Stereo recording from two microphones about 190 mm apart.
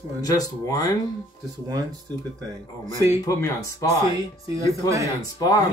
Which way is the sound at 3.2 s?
15° left (ahead or behind).